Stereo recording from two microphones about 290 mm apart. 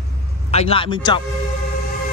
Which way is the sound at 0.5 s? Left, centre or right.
Left.